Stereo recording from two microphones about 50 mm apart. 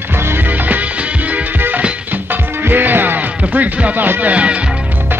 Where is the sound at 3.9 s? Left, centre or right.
Right.